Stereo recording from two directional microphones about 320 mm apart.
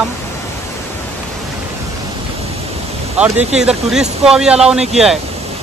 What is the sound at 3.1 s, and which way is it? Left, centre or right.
A man's voice, centre.